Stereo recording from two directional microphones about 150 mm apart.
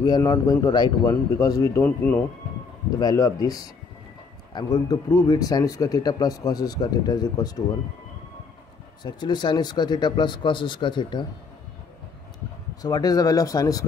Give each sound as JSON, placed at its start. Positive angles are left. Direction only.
{"t": 0.0, "sound": "speech", "side_deg": 25}
{"t": 3.0, "sound": "speech", "side_deg": 25}
{"t": 9.0, "sound": "speech", "side_deg": 30}
{"t": 12.8, "sound": "speech", "side_deg": 25}